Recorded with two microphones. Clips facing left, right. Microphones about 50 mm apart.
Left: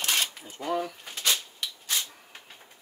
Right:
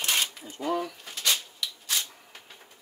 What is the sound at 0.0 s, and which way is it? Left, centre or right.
Single-lens reflex camera, centre.